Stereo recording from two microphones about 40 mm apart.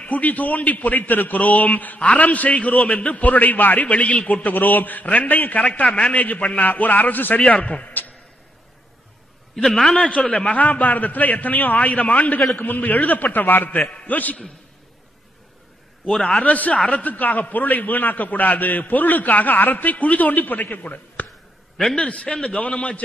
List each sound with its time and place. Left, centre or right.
0.0 s a man's voice: left
2.5 s a man's voice: left
5.9 s a man's voice: left
6.1 s a man's voice: left
7.5 s a man's voice: left
9.6 s a man's voice: centre
10.4 s a man's voice: left
16.1 s a man's voice: centre
16.4 s a man's voice: left
16.7 s a man's voice: left
17.0 s a man's voice: left
21.9 s a man's voice: left